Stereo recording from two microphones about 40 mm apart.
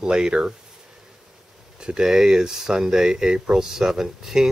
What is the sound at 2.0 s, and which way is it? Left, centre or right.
Speech, centre.